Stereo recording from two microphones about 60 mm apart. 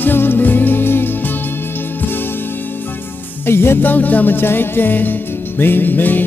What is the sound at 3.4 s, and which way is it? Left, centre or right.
Music, left.